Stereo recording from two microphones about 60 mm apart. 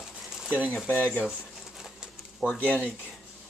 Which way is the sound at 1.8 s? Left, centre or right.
Centre.